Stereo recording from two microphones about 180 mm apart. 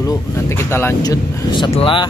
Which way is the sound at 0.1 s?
15° left (ahead or behind).